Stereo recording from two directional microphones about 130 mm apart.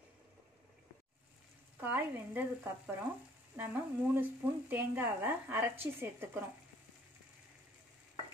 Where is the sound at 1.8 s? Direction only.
15° right (ahead or behind).